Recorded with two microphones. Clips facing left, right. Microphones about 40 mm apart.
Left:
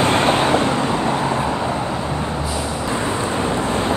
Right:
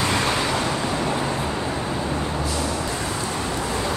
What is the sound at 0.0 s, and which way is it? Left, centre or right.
Waves, left.